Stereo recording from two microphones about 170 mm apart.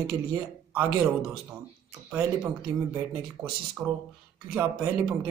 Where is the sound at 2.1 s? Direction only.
10° right (ahead or behind).